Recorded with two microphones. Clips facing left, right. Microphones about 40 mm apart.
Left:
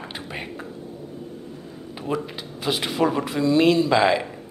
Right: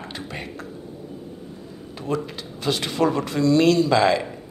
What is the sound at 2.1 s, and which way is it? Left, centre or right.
Speech, centre.